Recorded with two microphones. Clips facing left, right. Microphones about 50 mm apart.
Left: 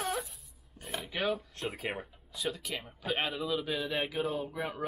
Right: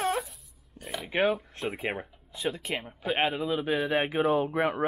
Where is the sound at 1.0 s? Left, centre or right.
Right.